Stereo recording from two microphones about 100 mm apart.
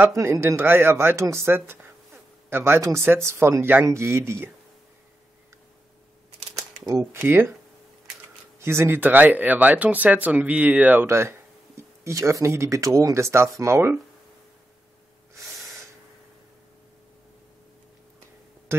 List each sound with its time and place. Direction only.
0.0 s speech: 25° right (ahead or behind)
7.0 s speech: 25° right (ahead or behind)
8.5 s speech: 25° right (ahead or behind)
11.1 s speech: 30° right (ahead or behind)
15.3 s gasp: 30° right (ahead or behind)